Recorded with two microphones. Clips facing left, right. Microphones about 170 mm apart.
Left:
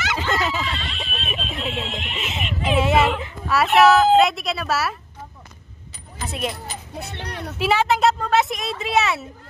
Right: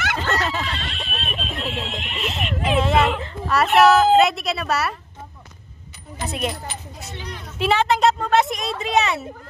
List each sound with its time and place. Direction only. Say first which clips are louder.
0.0 s a sound: even; 55° right (ahead or behind)
0.5 s snicker: even; centre (ahead or behind)
3.2 s speech: even; 5° left (ahead or behind)
6.2 s speech: right 1 dB; centre (ahead or behind)
7.0 s a sound: left 3 dB; 65° left (ahead or behind)
7.5 s speech: right 1 dB; 5° left (ahead or behind)